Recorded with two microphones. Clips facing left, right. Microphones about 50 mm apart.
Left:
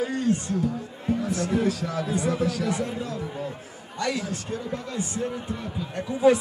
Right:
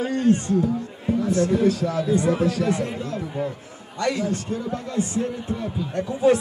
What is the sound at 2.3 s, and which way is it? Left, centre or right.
Speech, right.